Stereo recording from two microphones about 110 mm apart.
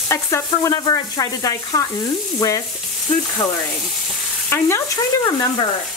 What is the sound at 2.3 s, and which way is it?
Frying, 30° left (ahead or behind).